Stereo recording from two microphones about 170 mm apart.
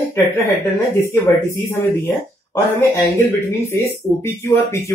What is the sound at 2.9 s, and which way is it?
Speech, 25° left (ahead or behind).